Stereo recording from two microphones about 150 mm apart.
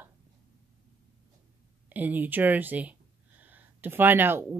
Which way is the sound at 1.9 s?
10° right (ahead or behind).